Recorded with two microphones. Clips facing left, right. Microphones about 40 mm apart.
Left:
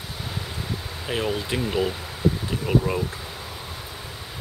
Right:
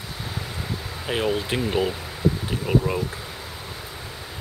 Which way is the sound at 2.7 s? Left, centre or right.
Centre.